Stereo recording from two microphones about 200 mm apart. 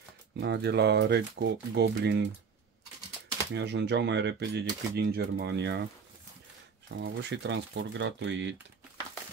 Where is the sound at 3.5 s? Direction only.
60° right (ahead or behind).